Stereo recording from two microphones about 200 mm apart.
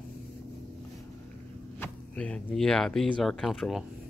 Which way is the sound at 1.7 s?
10° left (ahead or behind).